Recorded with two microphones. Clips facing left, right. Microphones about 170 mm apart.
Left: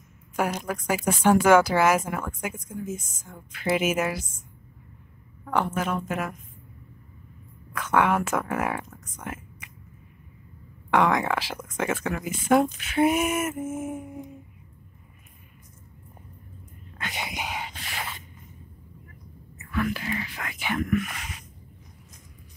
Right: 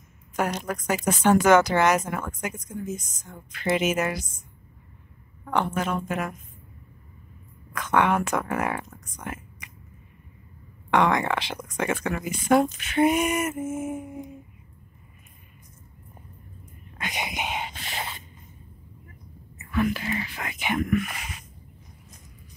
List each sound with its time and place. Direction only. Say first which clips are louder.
0.4 s a woman's voice: even; 5° left (ahead or behind)
5.4 s speech: even; 5° left (ahead or behind)
7.7 s speech: even; 5° left (ahead or behind)
10.9 s speech: even; 5° left (ahead or behind)
17.0 s a sound: right 2 dB; 20° right (ahead or behind)
19.6 s speech: right 3 dB; 20° right (ahead or behind)